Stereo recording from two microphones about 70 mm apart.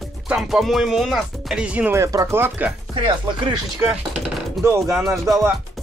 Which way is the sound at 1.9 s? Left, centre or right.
Right.